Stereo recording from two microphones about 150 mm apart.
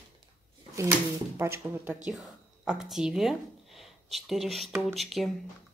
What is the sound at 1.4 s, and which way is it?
Speech, 15° right (ahead or behind).